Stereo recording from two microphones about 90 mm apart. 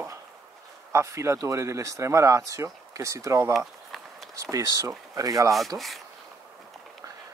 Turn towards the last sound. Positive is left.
turn(degrees=0)  # may be behind; listen again after turning